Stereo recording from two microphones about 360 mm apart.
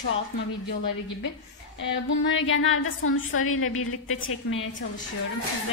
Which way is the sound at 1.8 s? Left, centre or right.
Left.